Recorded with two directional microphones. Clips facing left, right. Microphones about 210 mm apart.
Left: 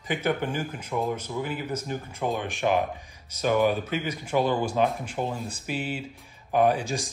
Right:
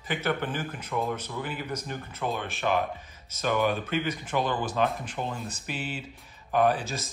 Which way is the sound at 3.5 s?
Centre (ahead or behind).